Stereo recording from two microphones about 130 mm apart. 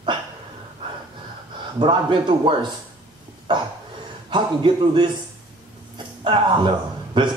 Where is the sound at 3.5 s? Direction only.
35° right (ahead or behind).